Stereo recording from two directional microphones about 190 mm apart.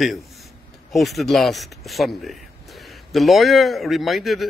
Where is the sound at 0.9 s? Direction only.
Centre (ahead or behind).